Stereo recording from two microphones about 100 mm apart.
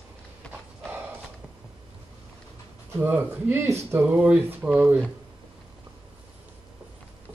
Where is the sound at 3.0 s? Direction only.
15° right (ahead or behind).